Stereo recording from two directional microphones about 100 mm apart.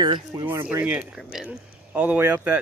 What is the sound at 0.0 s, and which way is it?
Speech, 40° right (ahead or behind).